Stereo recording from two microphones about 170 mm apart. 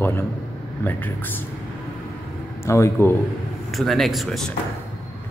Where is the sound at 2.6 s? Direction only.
15° left (ahead or behind).